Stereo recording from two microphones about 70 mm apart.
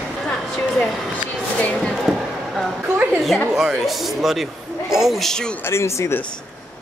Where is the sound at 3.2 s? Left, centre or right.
Centre.